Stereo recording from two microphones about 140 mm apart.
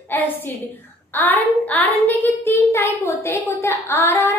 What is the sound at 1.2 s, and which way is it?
A child's voice, 10° left (ahead or behind).